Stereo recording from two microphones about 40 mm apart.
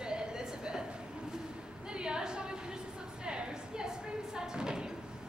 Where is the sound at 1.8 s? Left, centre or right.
Right.